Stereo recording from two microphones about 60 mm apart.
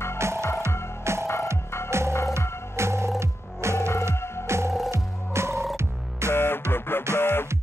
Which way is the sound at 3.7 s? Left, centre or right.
Left.